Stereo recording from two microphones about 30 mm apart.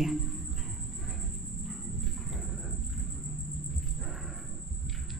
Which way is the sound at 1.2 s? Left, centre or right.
Centre.